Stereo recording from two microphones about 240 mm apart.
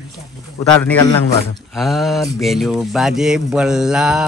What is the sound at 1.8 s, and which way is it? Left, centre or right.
Speech, centre.